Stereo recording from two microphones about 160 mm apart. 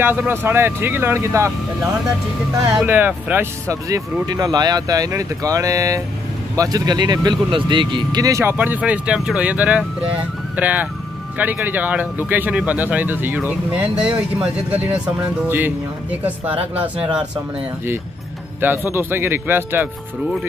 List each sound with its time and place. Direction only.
0.0 s speech: 15° right (ahead or behind)
2.7 s speech: 10° right (ahead or behind)
18.6 s speech: 15° right (ahead or behind)